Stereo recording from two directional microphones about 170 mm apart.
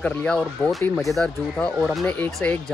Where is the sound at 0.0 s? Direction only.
5° left (ahead or behind).